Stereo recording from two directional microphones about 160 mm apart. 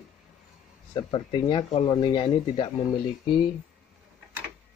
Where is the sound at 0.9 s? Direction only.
30° left (ahead or behind).